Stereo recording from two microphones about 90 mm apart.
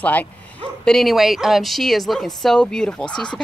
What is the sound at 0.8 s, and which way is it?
Speech, centre (ahead or behind).